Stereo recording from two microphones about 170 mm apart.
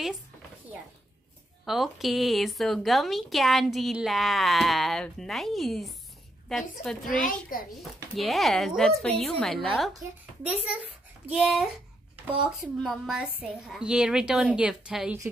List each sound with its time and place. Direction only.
1.7 s speech: centre (ahead or behind)
7.2 s a child's voice: 55° left (ahead or behind)
8.2 s a child's voice: centre (ahead or behind)
12.8 s speech: centre (ahead or behind)